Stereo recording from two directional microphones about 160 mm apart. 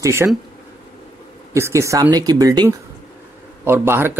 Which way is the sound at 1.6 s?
15° right (ahead or behind).